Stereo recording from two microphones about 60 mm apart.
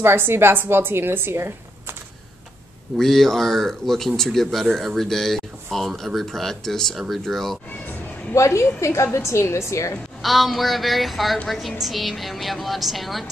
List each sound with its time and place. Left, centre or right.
0.0 s a woman's voice: right
3.0 s speech: centre
8.4 s a woman's voice: left
10.2 s speech: centre